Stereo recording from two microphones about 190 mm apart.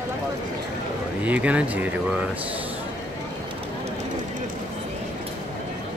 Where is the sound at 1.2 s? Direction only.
5° right (ahead or behind).